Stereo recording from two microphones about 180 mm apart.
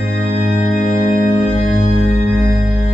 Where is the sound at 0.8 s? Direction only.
30° left (ahead or behind).